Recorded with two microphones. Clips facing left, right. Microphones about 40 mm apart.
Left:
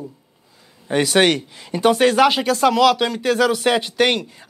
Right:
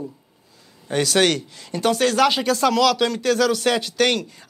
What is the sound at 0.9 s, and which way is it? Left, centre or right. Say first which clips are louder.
Speech: left 3 dB; centre.